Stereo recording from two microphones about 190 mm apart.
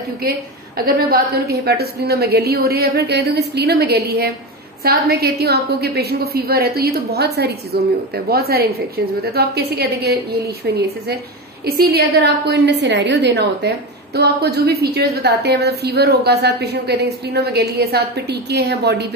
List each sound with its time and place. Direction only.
0.7 s a woman's voice: 50° right (ahead or behind)